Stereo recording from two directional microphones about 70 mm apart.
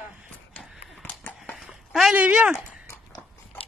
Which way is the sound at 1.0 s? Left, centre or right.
Left.